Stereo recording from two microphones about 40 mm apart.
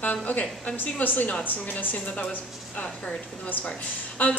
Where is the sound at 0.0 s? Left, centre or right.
Left.